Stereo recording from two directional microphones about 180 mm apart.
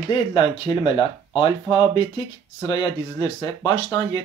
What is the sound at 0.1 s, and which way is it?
Speech, 25° left (ahead or behind).